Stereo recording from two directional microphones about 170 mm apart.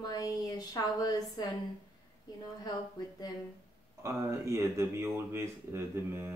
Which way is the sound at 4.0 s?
15° right (ahead or behind).